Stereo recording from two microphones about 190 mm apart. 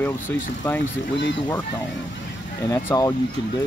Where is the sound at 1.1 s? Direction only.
75° left (ahead or behind).